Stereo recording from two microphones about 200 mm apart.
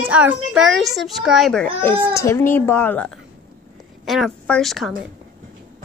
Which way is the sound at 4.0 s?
Centre (ahead or behind).